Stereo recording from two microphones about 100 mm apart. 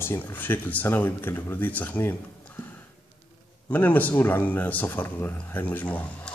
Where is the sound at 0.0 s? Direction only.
20° left (ahead or behind).